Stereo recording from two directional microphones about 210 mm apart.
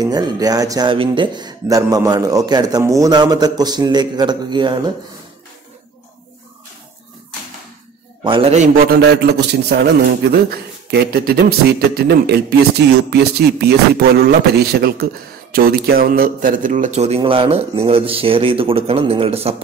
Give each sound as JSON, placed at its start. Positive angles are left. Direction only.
{"t": 0.0, "sound": "speech", "side_deg": -20}
{"t": 8.2, "sound": "a man's voice", "side_deg": -25}
{"t": 8.7, "sound": "a man's voice", "side_deg": -50}